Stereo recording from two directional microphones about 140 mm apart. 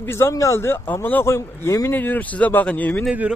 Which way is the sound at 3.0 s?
10° right (ahead or behind).